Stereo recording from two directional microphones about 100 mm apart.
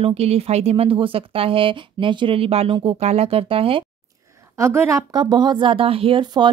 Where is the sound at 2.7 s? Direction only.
60° right (ahead or behind).